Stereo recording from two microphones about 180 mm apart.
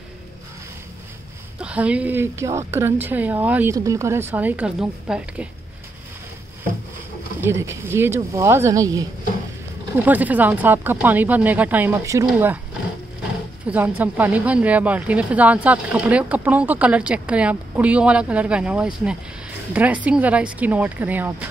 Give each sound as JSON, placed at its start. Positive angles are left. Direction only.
{"t": 1.6, "sound": "speech", "side_deg": -5}
{"t": 7.3, "sound": "speech", "side_deg": -15}
{"t": 13.7, "sound": "speech", "side_deg": -10}